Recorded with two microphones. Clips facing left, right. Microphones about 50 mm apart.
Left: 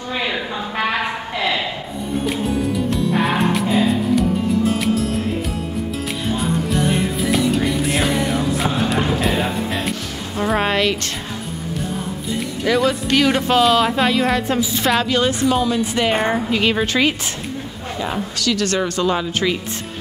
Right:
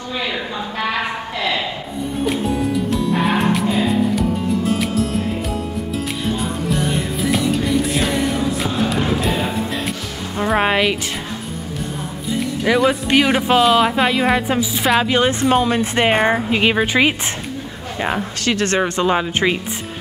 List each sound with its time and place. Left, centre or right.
0.3 s a sound: centre
2.2 s music: centre
6.4 s music: centre
12.7 s a woman's voice: centre
15.0 s speech: right
15.5 s speech: right
16.2 s a woman's voice: centre
16.4 s speech: centre
18.0 s speech: right